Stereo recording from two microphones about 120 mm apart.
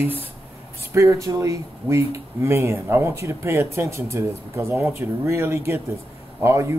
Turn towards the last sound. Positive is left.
turn(degrees=-25)  # may be behind; listen again after turning